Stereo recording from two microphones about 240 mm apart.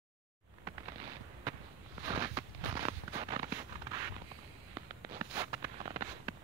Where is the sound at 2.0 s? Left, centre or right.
Centre.